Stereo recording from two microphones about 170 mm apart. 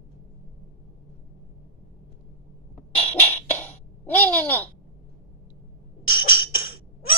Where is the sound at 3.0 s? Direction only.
10° left (ahead or behind).